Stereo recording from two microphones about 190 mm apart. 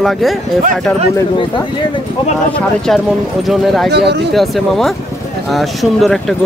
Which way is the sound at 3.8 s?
60° right (ahead or behind).